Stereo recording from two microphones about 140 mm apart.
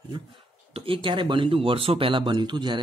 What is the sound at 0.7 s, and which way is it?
Speech, 40° right (ahead or behind).